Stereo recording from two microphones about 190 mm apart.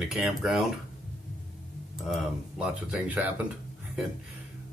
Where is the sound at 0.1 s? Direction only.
Centre (ahead or behind).